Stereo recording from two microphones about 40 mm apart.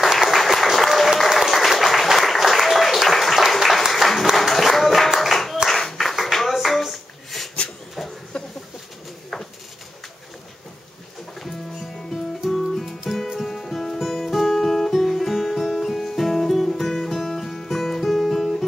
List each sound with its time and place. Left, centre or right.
0.0 s applause: centre
5.1 s a sound: centre
5.7 s clapping: centre
12.4 s music: centre